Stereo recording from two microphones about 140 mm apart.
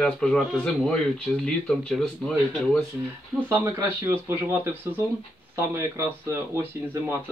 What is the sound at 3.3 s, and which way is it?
Speech, 20° right (ahead or behind).